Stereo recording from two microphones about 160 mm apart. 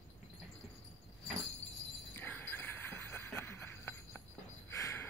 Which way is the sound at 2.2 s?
15° left (ahead or behind).